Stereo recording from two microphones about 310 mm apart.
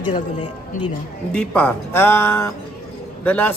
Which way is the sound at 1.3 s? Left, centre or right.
Centre.